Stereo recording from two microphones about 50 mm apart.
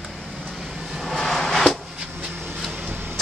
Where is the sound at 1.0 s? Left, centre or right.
Centre.